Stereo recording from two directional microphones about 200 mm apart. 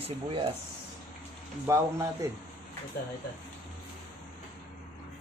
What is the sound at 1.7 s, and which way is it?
Speech, 15° right (ahead or behind).